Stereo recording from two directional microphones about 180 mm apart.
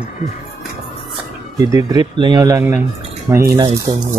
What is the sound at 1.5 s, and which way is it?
Speech, 20° right (ahead or behind).